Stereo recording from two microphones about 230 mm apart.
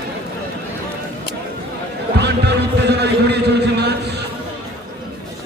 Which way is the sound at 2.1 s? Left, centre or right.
Right.